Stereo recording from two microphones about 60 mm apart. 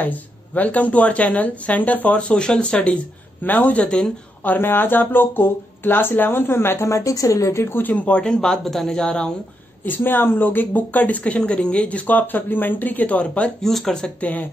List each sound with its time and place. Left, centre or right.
0.0 s speech: left
3.4 s speech: left
4.5 s speech: left
6.9 s a woman's voice: left
7.8 s speech: left
9.8 s speech: left
13.6 s speech: centre
14.2 s speech: left